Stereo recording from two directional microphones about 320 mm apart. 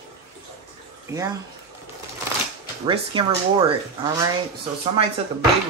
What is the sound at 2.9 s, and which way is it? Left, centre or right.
Speech, centre.